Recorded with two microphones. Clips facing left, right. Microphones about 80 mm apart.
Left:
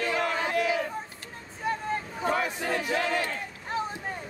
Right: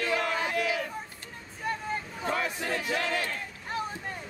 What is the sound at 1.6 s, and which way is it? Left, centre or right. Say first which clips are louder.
Vehicle: left 3 dB; centre.